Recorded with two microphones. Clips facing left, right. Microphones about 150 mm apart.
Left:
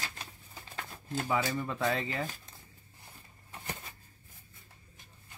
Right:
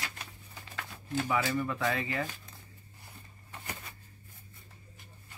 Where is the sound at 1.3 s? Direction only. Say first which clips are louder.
Even; 25° left (ahead or behind).